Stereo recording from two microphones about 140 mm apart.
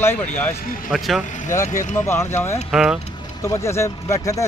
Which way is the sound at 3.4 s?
20° left (ahead or behind).